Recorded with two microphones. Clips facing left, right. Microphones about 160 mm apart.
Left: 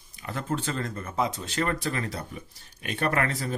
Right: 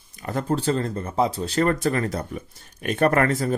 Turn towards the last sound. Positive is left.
turn(degrees=-50)  # may be behind; listen again after turning